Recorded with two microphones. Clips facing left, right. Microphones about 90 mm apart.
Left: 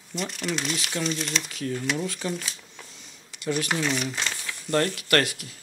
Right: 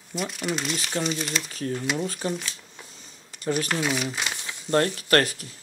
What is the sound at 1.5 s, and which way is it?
Speech, 40° right (ahead or behind).